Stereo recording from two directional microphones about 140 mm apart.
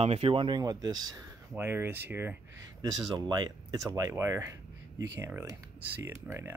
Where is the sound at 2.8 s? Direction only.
30° right (ahead or behind).